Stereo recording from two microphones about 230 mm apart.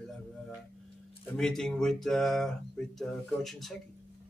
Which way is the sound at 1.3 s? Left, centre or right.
Centre.